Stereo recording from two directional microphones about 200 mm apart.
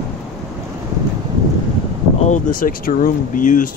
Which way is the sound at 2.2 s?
40° left (ahead or behind).